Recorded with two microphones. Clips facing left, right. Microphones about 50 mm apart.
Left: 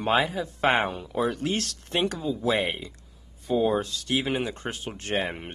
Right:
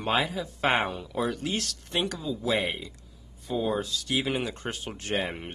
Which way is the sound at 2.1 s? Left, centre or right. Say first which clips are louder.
Left 3 dB; left.